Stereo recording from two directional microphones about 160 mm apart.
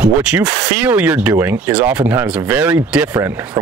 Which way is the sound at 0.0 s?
5° right (ahead or behind).